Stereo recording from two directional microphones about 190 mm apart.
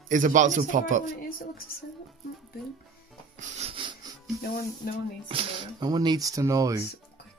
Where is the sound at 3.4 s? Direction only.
35° right (ahead or behind).